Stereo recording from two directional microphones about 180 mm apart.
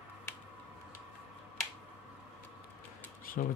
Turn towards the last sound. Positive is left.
turn(degrees=50)  # may be behind; listen again after turning